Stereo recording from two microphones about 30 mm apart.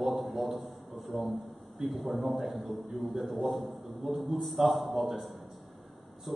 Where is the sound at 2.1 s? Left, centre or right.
Centre.